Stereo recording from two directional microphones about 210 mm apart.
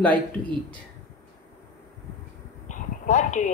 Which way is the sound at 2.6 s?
35° left (ahead or behind).